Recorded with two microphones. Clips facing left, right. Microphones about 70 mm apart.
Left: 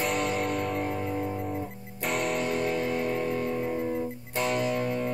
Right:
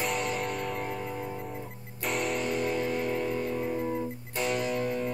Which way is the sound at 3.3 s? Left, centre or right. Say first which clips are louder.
Left 2 dB; centre.